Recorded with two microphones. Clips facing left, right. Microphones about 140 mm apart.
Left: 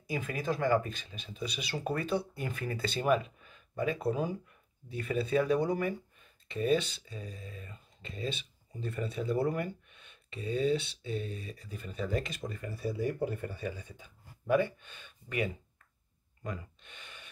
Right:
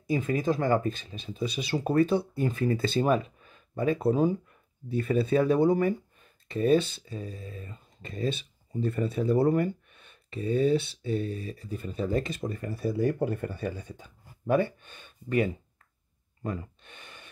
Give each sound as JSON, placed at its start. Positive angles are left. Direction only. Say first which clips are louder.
{"t": 0.1, "sound": "speech", "louder": "right 7 dB", "side_deg": -35}
{"t": 16.4, "sound": "gasp", "louder": "right 6 dB", "side_deg": -45}